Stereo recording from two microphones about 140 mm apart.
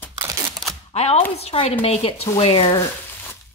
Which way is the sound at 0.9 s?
50° left (ahead or behind).